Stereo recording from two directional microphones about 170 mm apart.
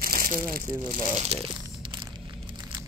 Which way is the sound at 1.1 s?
35° right (ahead or behind).